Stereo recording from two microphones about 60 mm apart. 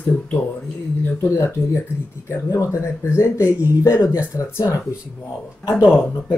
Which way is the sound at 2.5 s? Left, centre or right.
Left.